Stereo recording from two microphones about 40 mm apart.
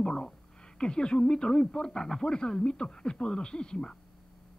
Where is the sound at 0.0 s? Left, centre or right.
Left.